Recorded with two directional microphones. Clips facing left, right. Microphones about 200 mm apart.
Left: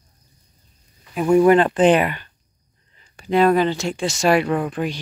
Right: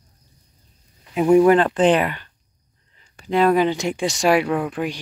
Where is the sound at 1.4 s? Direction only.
5° left (ahead or behind).